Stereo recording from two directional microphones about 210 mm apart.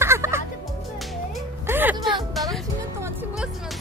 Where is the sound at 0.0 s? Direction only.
10° right (ahead or behind).